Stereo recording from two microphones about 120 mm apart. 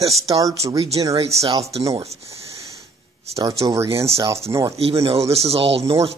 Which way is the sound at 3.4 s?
25° right (ahead or behind).